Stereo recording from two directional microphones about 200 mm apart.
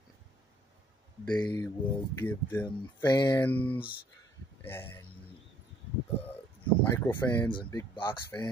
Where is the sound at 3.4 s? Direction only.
10° left (ahead or behind).